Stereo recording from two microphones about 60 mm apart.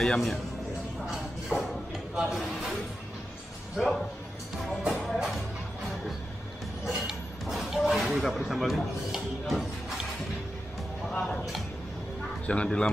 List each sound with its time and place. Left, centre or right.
0.0 s speech: centre
2.1 s speech: centre
3.7 s speech: centre
5.0 s music: centre
6.9 s a sound: centre
12.4 s speech: centre